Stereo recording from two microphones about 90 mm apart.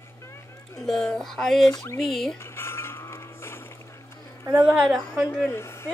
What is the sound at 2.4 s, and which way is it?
Music, 30° left (ahead or behind).